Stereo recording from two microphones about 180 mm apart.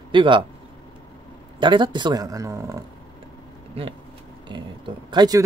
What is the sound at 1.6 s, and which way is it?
Speech, 25° right (ahead or behind).